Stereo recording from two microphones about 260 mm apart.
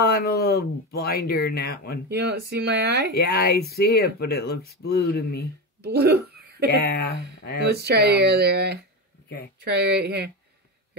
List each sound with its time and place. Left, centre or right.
0.0 s speech: left
2.0 s speech: right
3.2 s speech: left
5.8 s a sound: right
6.8 s speech: left
7.6 s speech: right